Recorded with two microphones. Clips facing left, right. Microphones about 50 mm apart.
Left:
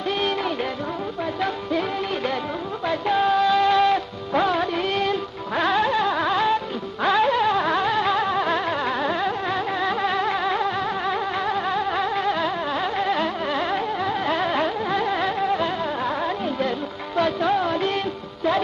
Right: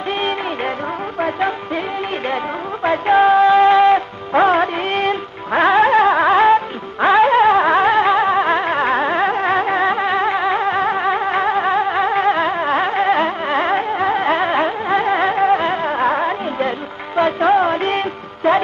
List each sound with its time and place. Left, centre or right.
2.8 s music: right